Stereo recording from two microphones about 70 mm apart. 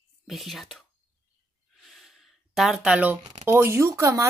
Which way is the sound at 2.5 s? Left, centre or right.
Centre.